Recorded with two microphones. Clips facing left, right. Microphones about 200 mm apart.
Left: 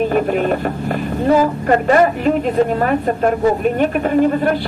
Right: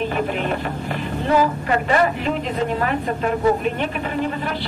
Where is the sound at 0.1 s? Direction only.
45° left (ahead or behind).